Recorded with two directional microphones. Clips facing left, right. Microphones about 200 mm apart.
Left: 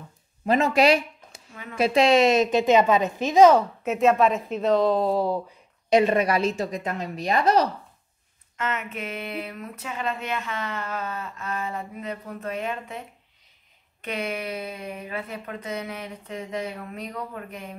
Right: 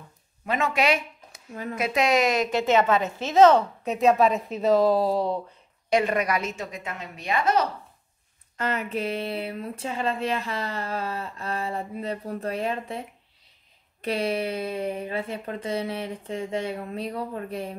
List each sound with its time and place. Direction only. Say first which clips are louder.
0.5 s speech: left 5 dB; 35° left (ahead or behind)
1.5 s speech: right 8 dB; 40° right (ahead or behind)
1.8 s a woman's voice: left 5 dB; 30° left (ahead or behind); by 5.4 s centre (ahead or behind)
5.9 s a woman's voice: left 4 dB; 20° left (ahead or behind)
8.5 s speech: right 3 dB; 35° right (ahead or behind)
14.0 s speech: right 4 dB; 35° right (ahead or behind)